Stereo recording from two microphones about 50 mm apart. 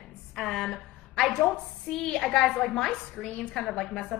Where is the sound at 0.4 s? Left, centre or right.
Centre.